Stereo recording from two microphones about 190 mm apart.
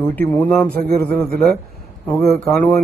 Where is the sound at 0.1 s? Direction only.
10° left (ahead or behind).